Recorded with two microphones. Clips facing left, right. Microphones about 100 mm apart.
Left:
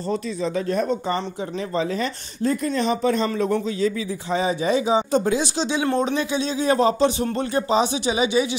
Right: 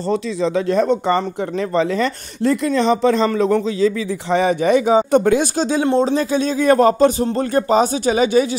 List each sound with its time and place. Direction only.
0.1 s speech: 90° right; by 5.9 s 45° right (ahead or behind)
5.9 s speech: 30° right (ahead or behind)
6.3 s speech: 50° right (ahead or behind)